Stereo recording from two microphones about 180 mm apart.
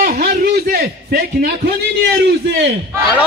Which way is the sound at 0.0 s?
50° right (ahead or behind).